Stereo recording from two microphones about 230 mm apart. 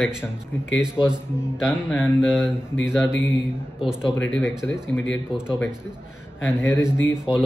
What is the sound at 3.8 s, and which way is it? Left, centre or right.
A man's voice, centre.